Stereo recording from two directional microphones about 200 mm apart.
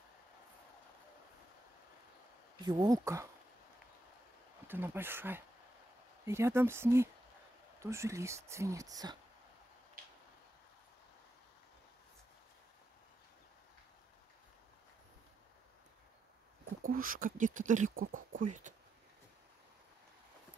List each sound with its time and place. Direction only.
2.6 s speech: 20° right (ahead or behind)
4.6 s speech: 10° right (ahead or behind)
16.8 s speech: 45° right (ahead or behind)